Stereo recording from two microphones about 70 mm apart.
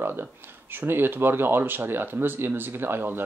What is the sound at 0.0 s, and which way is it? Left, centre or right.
Speech, right.